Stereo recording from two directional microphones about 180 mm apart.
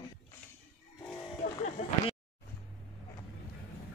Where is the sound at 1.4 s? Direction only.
40° left (ahead or behind).